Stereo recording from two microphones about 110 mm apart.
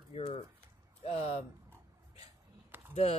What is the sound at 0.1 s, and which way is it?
Bird, 60° left (ahead or behind).